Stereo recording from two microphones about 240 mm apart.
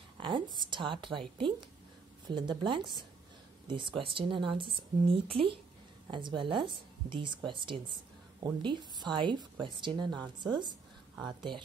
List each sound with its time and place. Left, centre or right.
0.6 s a woman's voice: centre
2.2 s a woman's voice: centre